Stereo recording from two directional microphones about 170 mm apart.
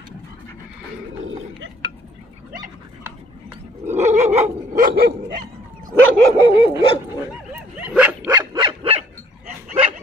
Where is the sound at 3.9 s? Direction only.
40° right (ahead or behind); by 5.4 s 60° right (ahead or behind).